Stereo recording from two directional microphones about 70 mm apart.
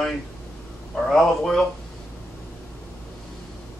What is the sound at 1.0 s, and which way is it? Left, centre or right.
Speech, centre.